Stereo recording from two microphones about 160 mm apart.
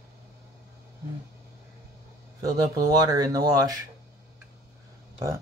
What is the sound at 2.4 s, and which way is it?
Speech, 25° right (ahead or behind).